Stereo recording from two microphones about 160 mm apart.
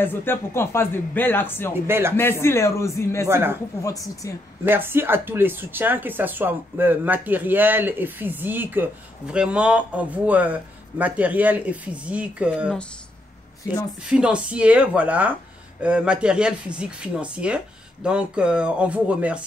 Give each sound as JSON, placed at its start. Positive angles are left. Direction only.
{"t": 0.0, "sound": "speech", "side_deg": 15}
{"t": 1.9, "sound": "speech", "side_deg": -15}
{"t": 2.1, "sound": "speech", "side_deg": 15}
{"t": 3.3, "sound": "speech", "side_deg": -15}
{"t": 3.8, "sound": "a woman's voice", "side_deg": 20}
{"t": 4.6, "sound": "speech", "side_deg": -15}
{"t": 14.0, "sound": "speech", "side_deg": -5}